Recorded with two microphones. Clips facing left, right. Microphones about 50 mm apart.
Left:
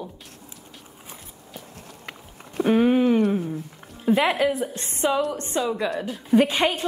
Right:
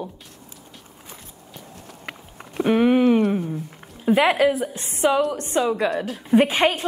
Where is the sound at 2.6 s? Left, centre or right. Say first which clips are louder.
Right 2 dB; right.